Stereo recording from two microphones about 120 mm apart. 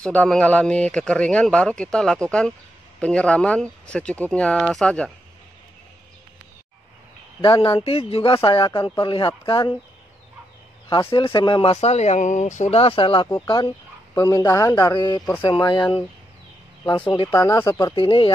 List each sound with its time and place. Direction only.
0.0 s speech: 10° left (ahead or behind)
7.4 s speech: 45° left (ahead or behind)
10.9 s speech: 45° left (ahead or behind)
13.3 s speech: 35° left (ahead or behind)
14.9 s speech: 40° left (ahead or behind)
17.3 s speech: 25° left (ahead or behind)
17.9 s speech: 45° left (ahead or behind)